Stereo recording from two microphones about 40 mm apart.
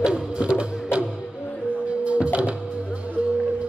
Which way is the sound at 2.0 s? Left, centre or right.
Right.